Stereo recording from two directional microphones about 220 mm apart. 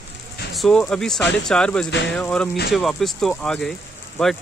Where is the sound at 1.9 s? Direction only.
55° left (ahead or behind).